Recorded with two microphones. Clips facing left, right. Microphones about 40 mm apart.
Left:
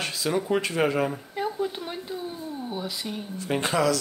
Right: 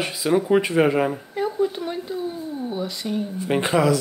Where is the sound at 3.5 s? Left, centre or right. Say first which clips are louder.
Right 4 dB; centre.